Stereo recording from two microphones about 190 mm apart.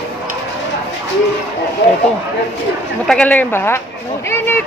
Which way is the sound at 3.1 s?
5° left (ahead or behind).